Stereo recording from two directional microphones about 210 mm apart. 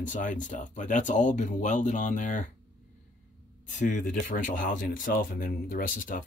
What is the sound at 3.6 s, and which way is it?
Speech, 40° left (ahead or behind).